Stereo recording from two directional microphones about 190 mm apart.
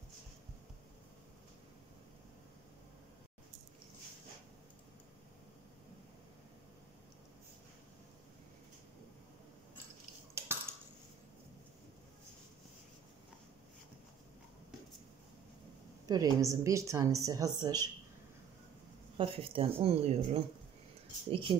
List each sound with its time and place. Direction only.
10.4 s cutlery: 15° right (ahead or behind)
16.1 s a woman's voice: 20° right (ahead or behind)
19.1 s speech: 30° right (ahead or behind)